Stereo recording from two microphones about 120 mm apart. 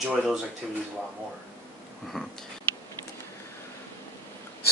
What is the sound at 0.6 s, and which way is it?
Speech, 5° right (ahead or behind).